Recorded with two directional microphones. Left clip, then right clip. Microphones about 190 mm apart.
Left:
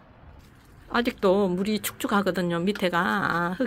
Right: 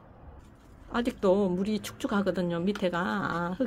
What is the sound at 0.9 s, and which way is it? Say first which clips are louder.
Speech: left 4 dB; 10° left (ahead or behind).